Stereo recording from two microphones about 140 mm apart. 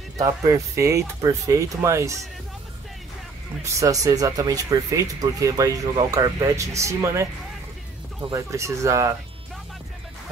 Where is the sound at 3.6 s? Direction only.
25° right (ahead or behind).